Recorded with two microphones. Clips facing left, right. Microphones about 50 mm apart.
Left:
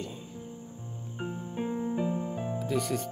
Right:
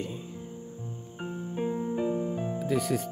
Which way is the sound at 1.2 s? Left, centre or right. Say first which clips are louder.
Right 2 dB; centre.